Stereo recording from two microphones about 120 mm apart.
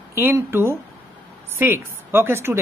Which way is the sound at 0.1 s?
20° right (ahead or behind).